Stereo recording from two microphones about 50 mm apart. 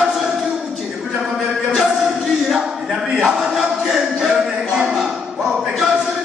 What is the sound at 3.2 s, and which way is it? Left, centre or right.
Music, centre.